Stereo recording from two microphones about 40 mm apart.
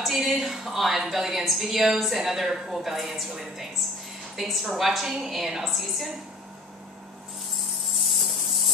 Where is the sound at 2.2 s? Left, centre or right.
Centre.